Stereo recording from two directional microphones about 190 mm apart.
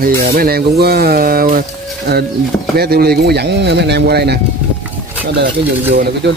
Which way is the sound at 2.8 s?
55° right (ahead or behind).